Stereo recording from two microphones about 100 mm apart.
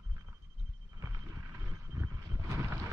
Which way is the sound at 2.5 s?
30° right (ahead or behind).